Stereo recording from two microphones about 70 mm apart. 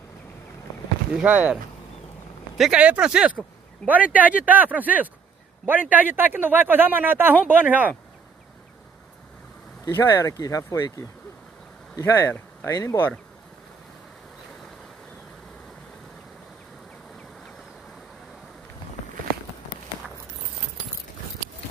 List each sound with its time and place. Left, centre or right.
1.1 s speech: right
2.7 s speech: centre
9.9 s speech: left
11.9 s speech: left